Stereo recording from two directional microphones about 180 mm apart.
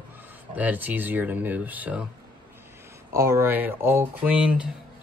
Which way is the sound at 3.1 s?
15° right (ahead or behind).